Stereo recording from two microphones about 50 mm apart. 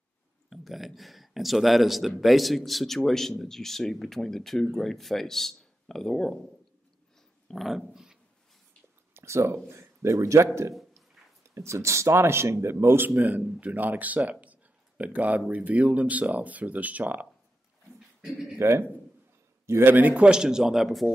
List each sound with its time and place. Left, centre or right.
0.5 s speech: centre
7.4 s speech: centre
9.1 s speech: right
13.1 s speech: right
17.9 s a sound: centre
18.6 s a man's voice: right
19.8 s speech: right
20.2 s speech: centre